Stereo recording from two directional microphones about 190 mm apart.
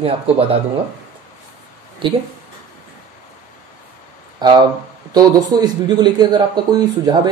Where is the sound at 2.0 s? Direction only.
25° right (ahead or behind).